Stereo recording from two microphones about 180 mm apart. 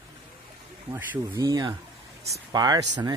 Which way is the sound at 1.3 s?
20° right (ahead or behind).